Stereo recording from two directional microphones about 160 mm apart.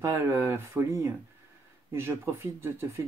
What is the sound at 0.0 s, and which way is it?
Speech, 15° right (ahead or behind).